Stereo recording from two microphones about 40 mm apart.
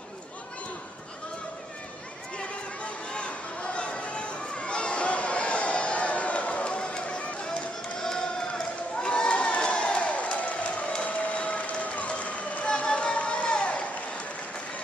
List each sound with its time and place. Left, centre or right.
3.1 s chatter: left
8.0 s crowd: centre